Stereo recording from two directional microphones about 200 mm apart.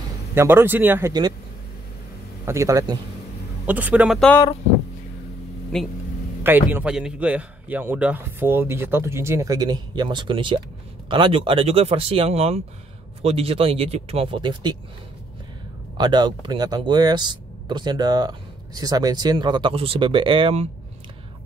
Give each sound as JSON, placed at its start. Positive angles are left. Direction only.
{"t": 0.3, "sound": "a man's voice", "side_deg": -10}
{"t": 2.4, "sound": "a man's voice", "side_deg": -15}
{"t": 5.7, "sound": "speech", "side_deg": 5}
{"t": 6.4, "sound": "a man's voice", "side_deg": -10}
{"t": 16.0, "sound": "speech", "side_deg": -20}